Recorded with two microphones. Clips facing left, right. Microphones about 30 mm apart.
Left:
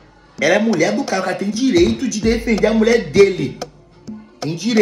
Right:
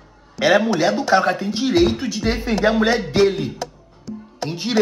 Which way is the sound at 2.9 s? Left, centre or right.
Left.